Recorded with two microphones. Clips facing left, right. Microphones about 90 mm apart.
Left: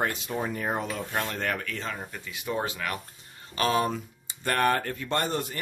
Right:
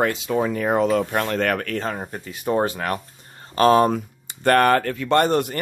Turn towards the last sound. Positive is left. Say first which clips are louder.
# right 10 dB
turn(degrees=-70)  # may be behind; listen again after turning